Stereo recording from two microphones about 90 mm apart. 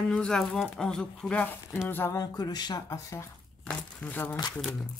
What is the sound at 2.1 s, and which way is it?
Speech, 45° left (ahead or behind).